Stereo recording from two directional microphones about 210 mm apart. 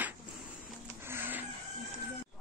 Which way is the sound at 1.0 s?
10° right (ahead or behind).